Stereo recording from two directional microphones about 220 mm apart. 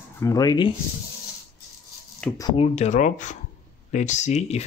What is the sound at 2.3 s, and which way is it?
Speech, 20° left (ahead or behind).